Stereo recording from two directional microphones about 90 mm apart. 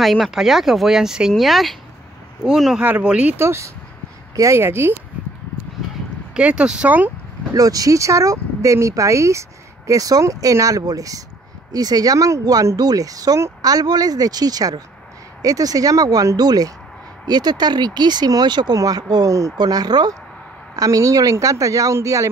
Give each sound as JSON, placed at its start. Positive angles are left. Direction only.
{"t": 0.0, "sound": "speech", "side_deg": 0}
{"t": 3.3, "sound": "speech", "side_deg": -30}
{"t": 6.3, "sound": "speech", "side_deg": -10}
{"t": 7.5, "sound": "speech", "side_deg": -40}
{"t": 19.6, "sound": "speech", "side_deg": -50}